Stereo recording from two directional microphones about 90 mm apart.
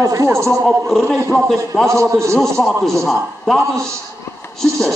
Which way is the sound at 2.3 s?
5° left (ahead or behind).